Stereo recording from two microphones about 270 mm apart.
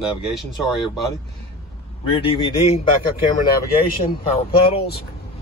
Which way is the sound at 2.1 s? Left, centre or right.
Left.